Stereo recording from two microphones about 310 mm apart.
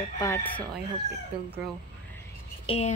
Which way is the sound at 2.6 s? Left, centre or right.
Centre.